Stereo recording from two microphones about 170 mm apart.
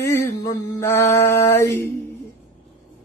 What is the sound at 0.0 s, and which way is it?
A woman's voice, 15° left (ahead or behind).